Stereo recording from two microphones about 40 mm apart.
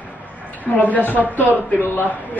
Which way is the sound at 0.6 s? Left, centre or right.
Left.